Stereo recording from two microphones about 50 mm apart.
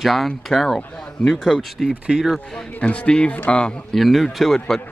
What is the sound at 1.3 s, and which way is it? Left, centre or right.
Speech, centre.